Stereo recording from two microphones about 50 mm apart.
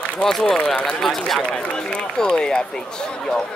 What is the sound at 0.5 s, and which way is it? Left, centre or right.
Speech, left.